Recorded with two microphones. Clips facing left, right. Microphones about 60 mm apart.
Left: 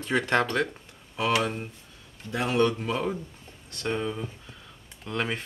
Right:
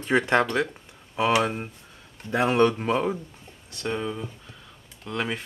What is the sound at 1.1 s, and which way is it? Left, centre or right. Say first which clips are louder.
Speech: right 3 dB; right.